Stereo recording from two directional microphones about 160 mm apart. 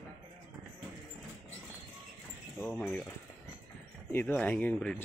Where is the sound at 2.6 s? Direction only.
5° left (ahead or behind).